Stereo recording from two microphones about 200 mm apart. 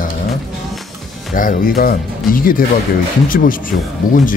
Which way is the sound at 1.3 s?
45° left (ahead or behind).